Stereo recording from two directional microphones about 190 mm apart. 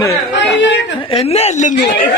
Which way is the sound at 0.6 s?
65° left (ahead or behind).